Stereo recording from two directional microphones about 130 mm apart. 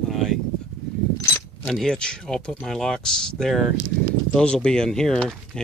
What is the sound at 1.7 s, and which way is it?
Speech, 5° left (ahead or behind).